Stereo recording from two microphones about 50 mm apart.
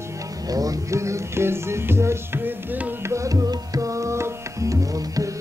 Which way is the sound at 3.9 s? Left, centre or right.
Right.